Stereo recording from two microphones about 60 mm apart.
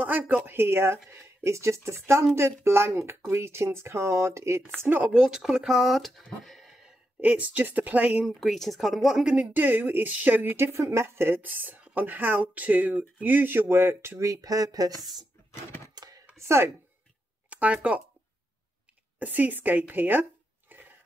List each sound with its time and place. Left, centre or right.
0.0 s speech: right
0.5 s speech: right
4.7 s speech: right
5.1 s speech: centre
6.4 s a sound: centre
7.2 s speech: right
8.4 s speech: centre
9.5 s speech: right
14.1 s speech: right
15.0 s speech: centre
16.0 s chopping: right
16.3 s a woman's voice: right
17.5 s speech: right
19.1 s speech: right